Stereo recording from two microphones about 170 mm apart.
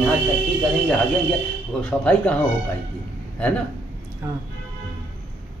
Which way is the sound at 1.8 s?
5° left (ahead or behind).